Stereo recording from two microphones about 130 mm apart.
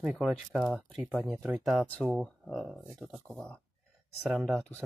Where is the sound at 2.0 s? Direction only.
Centre (ahead or behind).